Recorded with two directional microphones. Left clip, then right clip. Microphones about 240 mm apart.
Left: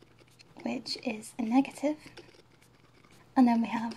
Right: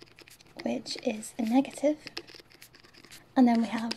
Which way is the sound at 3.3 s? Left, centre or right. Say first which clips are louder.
Right 1 dB; centre.